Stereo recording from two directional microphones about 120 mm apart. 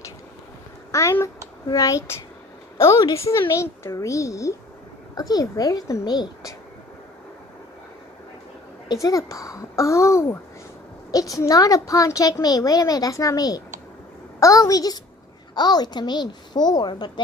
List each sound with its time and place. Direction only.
0.9 s a woman's voice: 25° left (ahead or behind)
8.8 s a woman's voice: 30° left (ahead or behind)